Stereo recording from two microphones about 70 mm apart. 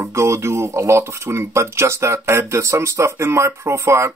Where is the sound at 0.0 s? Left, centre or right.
Right.